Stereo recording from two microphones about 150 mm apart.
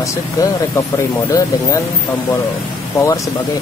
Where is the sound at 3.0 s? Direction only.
20° left (ahead or behind).